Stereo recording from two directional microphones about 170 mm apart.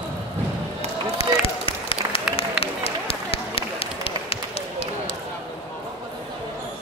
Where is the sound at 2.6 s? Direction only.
35° left (ahead or behind).